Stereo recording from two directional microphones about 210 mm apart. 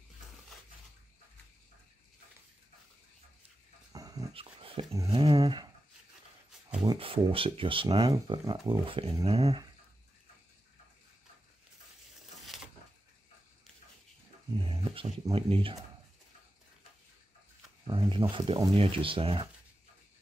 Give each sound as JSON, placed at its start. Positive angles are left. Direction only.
{"t": 3.9, "sound": "dog", "side_deg": -15}
{"t": 5.1, "sound": "a sound", "side_deg": -25}
{"t": 6.8, "sound": "speech", "side_deg": -25}
{"t": 14.6, "sound": "dog", "side_deg": -25}
{"t": 15.3, "sound": "speech", "side_deg": -25}
{"t": 17.8, "sound": "speech", "side_deg": -20}